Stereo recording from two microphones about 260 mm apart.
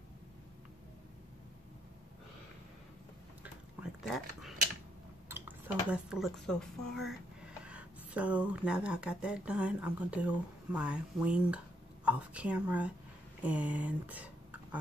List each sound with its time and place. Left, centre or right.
3.8 s speech: centre
5.3 s a sound: centre
5.9 s speech: centre